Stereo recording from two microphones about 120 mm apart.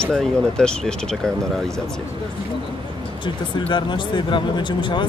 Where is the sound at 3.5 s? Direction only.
40° left (ahead or behind).